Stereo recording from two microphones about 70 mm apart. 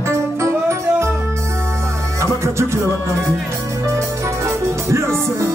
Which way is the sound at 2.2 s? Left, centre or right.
Right.